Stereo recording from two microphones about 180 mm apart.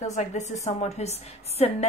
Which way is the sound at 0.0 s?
40° left (ahead or behind).